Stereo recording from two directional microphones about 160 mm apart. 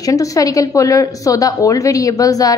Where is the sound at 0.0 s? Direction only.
20° left (ahead or behind).